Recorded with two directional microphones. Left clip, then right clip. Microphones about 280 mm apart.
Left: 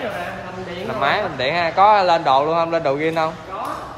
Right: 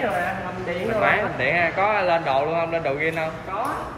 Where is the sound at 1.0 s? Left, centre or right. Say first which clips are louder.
Left 3 dB; centre.